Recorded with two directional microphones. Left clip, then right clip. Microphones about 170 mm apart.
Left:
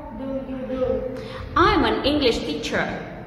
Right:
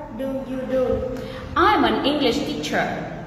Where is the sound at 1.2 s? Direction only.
25° left (ahead or behind).